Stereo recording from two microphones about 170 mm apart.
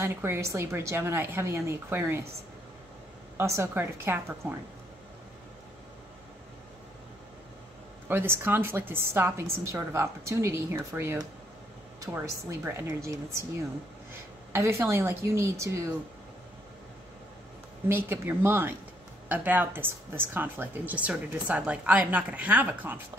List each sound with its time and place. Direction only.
0.0 s speech: 15° right (ahead or behind)
3.3 s speech: 15° right (ahead or behind)
8.1 s speech: 15° right (ahead or behind)
14.5 s speech: 15° right (ahead or behind)
17.8 s speech: 15° right (ahead or behind)